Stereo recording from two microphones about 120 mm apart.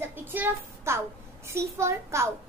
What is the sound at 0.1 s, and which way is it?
A child's voice, 15° right (ahead or behind).